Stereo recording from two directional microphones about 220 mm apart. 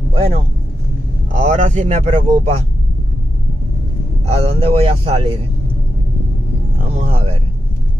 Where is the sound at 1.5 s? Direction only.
30° right (ahead or behind).